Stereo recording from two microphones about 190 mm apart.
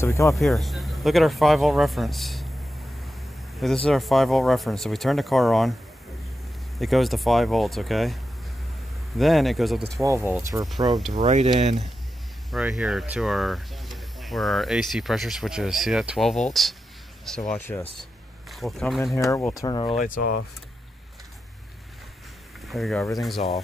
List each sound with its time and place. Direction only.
0.0 s speech: 15° left (ahead or behind)
0.4 s speech: centre (ahead or behind)
3.5 s speech: centre (ahead or behind)
6.8 s speech: centre (ahead or behind)
9.2 s speech: centre (ahead or behind)
10.0 s speech: 15° right (ahead or behind)
10.9 s speech: centre (ahead or behind)
11.1 s speech: 35° right (ahead or behind)
11.5 s speech: centre (ahead or behind)
17.5 s speech: 10° left (ahead or behind)
18.5 s speech: centre (ahead or behind)
19.1 s speech: 15° left (ahead or behind)
22.7 s speech: centre (ahead or behind)